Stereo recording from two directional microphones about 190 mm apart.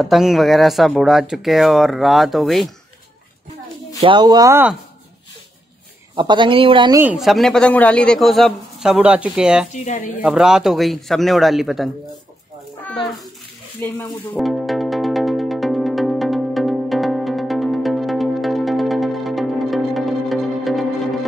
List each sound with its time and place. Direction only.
0.0 s speech: centre (ahead or behind)
4.0 s speech: 25° right (ahead or behind)
6.1 s speech: 25° right (ahead or behind)
7.0 s speech: 5° right (ahead or behind)
13.7 s speech: 10° left (ahead or behind)
14.3 s music: centre (ahead or behind)